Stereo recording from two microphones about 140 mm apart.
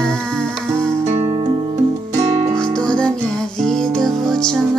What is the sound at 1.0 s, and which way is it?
Music, 55° right (ahead or behind).